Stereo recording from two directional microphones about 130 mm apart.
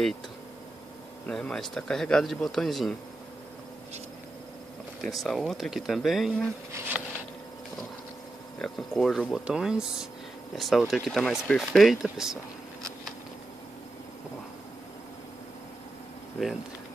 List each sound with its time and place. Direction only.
1.2 s speech: 5° left (ahead or behind)
5.0 s speech: centre (ahead or behind)
8.5 s speech: 5° left (ahead or behind)